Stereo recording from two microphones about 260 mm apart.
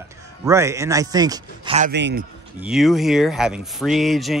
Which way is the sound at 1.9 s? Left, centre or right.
Right.